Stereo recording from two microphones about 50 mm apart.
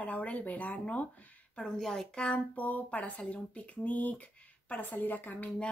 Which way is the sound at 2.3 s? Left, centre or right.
Left.